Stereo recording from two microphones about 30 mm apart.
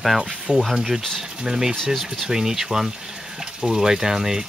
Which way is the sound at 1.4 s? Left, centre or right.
Centre.